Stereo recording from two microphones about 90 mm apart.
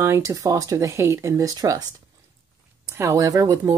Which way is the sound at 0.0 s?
35° right (ahead or behind).